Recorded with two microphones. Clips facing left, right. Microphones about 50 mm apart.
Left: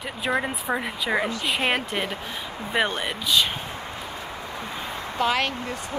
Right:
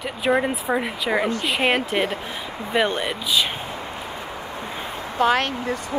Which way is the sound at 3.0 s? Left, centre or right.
Centre.